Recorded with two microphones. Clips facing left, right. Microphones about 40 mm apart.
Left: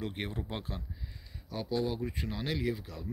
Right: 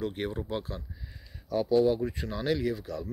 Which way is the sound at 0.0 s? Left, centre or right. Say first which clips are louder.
Right 5 dB; centre.